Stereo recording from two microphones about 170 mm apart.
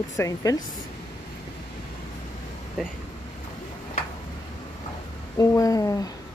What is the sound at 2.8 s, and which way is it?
Speech, centre (ahead or behind).